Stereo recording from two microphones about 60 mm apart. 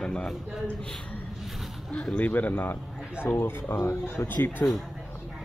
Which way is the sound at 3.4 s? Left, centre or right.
Left.